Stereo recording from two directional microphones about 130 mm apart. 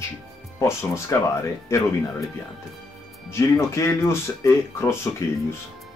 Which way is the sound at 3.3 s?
20° left (ahead or behind).